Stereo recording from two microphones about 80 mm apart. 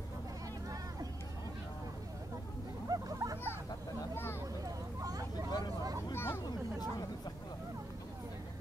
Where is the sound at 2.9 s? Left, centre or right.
Right.